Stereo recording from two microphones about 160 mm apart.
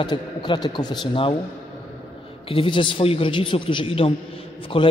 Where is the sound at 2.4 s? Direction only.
35° left (ahead or behind).